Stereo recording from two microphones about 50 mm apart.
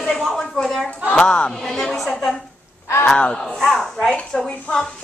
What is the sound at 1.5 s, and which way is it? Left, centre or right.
Speech, centre.